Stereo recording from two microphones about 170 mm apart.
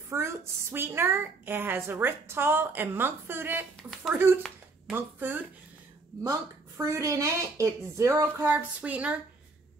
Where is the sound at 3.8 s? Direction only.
Centre (ahead or behind).